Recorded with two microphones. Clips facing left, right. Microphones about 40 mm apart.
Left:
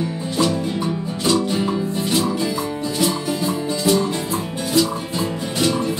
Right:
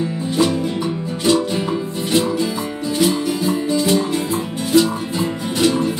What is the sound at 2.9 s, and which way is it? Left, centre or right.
Music, right.